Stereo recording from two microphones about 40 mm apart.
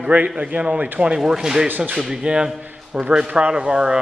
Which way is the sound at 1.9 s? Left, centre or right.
Centre.